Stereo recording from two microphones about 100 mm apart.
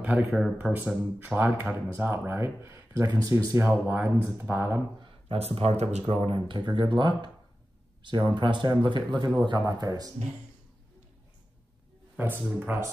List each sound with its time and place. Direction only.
0.0 s speech: 15° right (ahead or behind)
0.6 s speech: 10° left (ahead or behind)
1.2 s speech: 15° right (ahead or behind); by 3.6 s 35° right (ahead or behind)
3.6 s speech: 15° right (ahead or behind)
5.3 s speech: 90° right
6.2 s speech: 60° right (ahead or behind); by 10.1 s 40° right (ahead or behind)
12.2 s speech: 20° right (ahead or behind)